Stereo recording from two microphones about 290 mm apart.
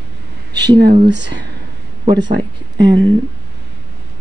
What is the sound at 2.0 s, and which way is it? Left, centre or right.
Speech, centre.